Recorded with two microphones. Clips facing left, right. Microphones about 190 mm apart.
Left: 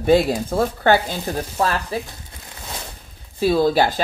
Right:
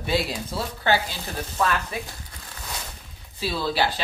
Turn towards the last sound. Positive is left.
turn(degrees=45)  # may be behind; listen again after turning